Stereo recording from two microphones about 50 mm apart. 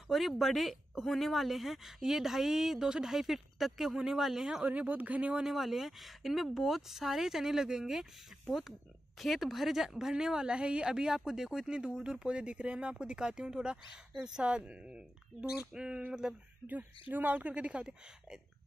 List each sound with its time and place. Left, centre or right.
0.1 s speech: centre
4.6 s speech: right
5.5 s speech: centre
16.6 s speech: right